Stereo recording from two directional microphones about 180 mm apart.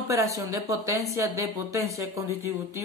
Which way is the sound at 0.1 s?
15° right (ahead or behind).